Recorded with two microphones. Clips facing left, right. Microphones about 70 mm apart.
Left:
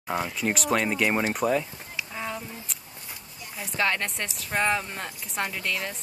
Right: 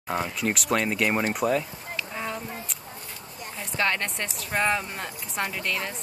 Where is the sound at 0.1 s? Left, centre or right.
Centre.